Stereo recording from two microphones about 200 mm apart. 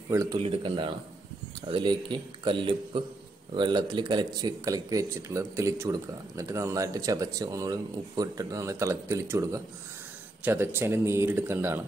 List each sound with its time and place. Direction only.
0.1 s speech: 15° right (ahead or behind)